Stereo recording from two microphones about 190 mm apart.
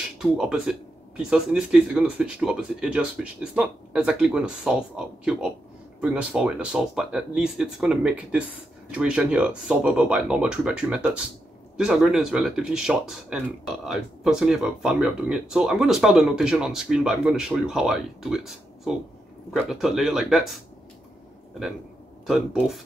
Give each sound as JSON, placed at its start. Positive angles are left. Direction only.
{"t": 0.2, "sound": "speech", "side_deg": -5}
{"t": 22.2, "sound": "speech", "side_deg": 0}